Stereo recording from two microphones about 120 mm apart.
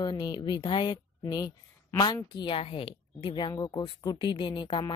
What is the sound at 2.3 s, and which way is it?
A woman's voice, 45° left (ahead or behind).